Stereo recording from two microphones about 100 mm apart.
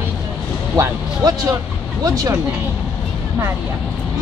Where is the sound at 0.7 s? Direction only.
35° right (ahead or behind).